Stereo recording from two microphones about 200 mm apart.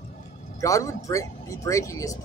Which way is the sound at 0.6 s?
15° left (ahead or behind).